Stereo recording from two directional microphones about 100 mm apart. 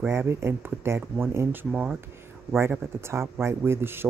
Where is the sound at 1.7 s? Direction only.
5° right (ahead or behind).